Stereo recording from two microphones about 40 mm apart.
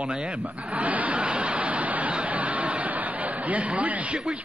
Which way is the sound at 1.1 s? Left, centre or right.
Right.